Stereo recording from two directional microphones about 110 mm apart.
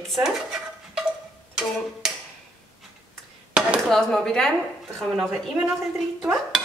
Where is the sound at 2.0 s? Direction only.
5° right (ahead or behind).